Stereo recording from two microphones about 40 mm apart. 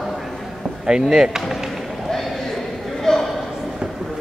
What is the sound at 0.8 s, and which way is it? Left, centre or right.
Speech, centre.